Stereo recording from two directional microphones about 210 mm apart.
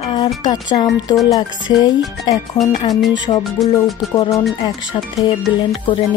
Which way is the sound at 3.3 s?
20° left (ahead or behind).